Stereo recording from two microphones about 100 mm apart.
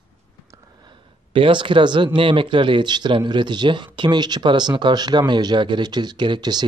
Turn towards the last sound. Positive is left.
turn(degrees=-45)  # may be behind; listen again after turning